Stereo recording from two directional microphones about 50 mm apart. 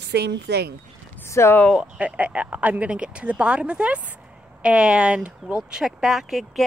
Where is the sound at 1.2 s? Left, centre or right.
Left.